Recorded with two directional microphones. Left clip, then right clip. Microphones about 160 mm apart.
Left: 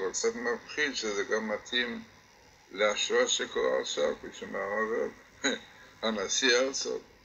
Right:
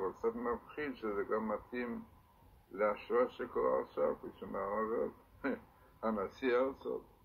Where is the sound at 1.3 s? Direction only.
40° left (ahead or behind).